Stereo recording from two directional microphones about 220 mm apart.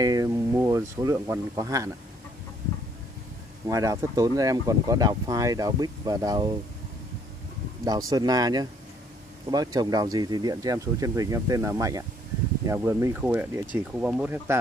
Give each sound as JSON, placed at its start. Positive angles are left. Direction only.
{"t": 0.0, "sound": "speech", "side_deg": -15}
{"t": 3.6, "sound": "speech", "side_deg": -15}
{"t": 7.8, "sound": "speech", "side_deg": -15}